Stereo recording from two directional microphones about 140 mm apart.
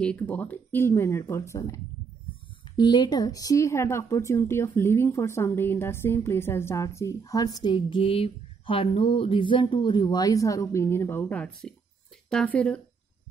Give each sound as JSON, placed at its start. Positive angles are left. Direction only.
{"t": 0.0, "sound": "speech", "side_deg": 10}
{"t": 2.8, "sound": "speech", "side_deg": 30}